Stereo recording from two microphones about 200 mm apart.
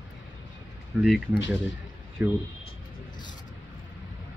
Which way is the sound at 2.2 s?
10° right (ahead or behind).